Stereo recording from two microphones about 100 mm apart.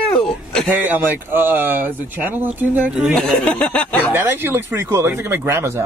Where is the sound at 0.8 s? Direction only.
20° right (ahead or behind).